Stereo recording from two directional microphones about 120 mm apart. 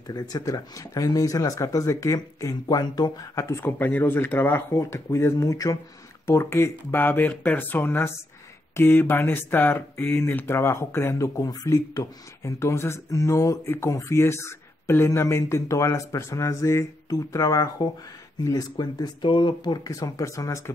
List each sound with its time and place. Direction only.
0.0 s speech: 30° left (ahead or behind)